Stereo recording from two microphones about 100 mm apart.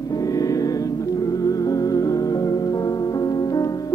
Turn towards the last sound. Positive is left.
turn(degrees=40)  # may be behind; listen again after turning